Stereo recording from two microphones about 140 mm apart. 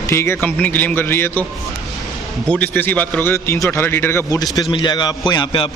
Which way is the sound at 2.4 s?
10° left (ahead or behind).